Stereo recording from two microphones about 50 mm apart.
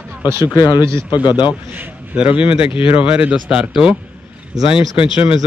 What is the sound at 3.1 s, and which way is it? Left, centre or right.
Speech, right.